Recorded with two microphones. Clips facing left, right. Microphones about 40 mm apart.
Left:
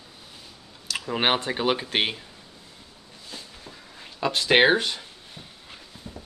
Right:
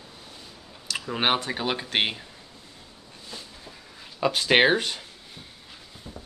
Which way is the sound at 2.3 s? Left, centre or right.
Right.